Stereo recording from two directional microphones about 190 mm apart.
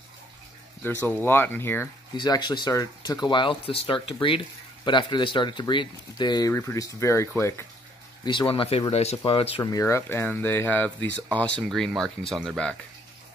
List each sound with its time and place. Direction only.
0.8 s speech: 10° left (ahead or behind)
2.1 s speech: 20° left (ahead or behind)
8.2 s speech: 25° left (ahead or behind)
9.6 s speech: 15° left (ahead or behind)